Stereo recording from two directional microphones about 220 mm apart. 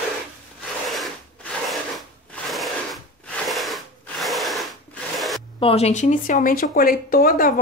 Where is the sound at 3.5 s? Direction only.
Centre (ahead or behind).